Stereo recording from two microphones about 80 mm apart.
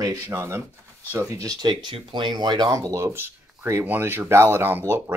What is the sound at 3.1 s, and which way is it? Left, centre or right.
Speech, right.